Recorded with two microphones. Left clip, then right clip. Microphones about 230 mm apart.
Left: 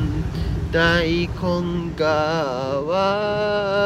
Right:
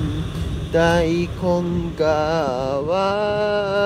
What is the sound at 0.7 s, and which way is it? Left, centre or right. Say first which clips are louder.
Mantra: right 1 dB; right.